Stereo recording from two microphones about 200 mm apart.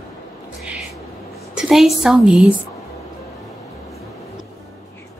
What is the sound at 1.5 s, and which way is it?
A woman's voice, 5° right (ahead or behind).